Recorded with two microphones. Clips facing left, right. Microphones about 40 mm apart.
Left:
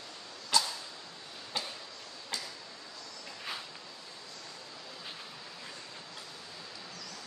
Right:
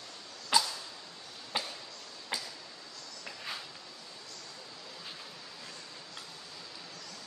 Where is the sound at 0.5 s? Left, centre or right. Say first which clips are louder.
Right 1 dB; centre.